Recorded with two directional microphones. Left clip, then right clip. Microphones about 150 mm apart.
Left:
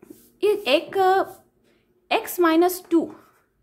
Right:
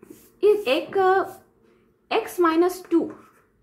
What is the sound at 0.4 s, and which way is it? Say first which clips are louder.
Child singing: right 1 dB; 35° left (ahead or behind).